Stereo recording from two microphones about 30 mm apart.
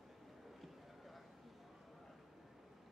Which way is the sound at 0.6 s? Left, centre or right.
Centre.